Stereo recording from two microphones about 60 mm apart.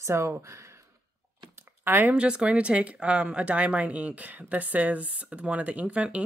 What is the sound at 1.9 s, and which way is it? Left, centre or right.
Speech, right.